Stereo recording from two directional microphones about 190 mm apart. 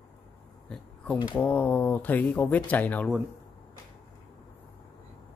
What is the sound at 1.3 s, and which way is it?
Speech, 10° left (ahead or behind).